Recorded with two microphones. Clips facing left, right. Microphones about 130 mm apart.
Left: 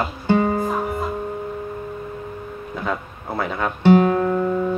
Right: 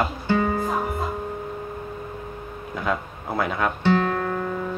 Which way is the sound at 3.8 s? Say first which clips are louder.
Left 9 dB; 15° left (ahead or behind).